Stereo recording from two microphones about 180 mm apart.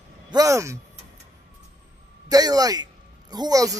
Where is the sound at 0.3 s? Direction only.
20° right (ahead or behind).